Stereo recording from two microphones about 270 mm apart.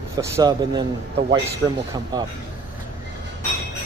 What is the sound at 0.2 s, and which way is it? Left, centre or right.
Speech, centre.